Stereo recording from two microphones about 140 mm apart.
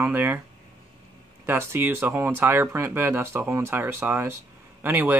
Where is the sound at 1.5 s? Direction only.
15° right (ahead or behind).